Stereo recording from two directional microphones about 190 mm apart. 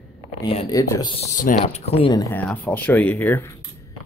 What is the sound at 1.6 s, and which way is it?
Speech, 35° left (ahead or behind).